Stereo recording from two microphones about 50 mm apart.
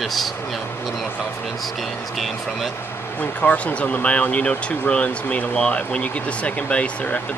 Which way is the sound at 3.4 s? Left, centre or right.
Left.